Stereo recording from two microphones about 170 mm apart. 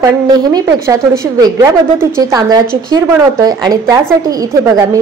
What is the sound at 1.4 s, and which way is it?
A woman's voice, 20° right (ahead or behind).